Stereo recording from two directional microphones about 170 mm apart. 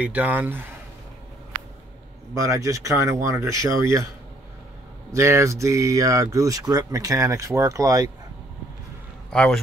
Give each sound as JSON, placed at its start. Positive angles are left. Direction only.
{"t": 0.0, "sound": "speech", "side_deg": -10}
{"t": 2.3, "sound": "speech", "side_deg": -20}
{"t": 5.1, "sound": "speech", "side_deg": -15}
{"t": 9.3, "sound": "a man's voice", "side_deg": 5}